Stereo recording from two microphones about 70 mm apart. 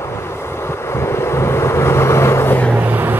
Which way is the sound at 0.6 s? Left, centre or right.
Left.